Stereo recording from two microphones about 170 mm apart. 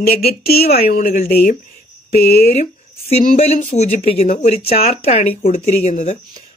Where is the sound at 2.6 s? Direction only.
40° left (ahead or behind).